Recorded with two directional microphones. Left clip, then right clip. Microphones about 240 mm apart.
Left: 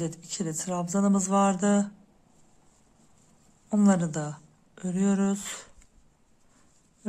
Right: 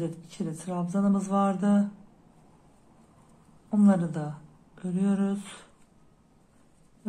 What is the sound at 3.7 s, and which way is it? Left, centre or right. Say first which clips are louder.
A woman's voice: even; left.